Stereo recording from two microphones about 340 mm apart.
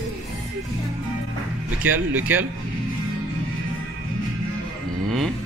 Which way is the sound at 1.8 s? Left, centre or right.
Centre.